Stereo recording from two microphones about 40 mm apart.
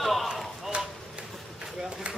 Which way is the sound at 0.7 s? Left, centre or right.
Right.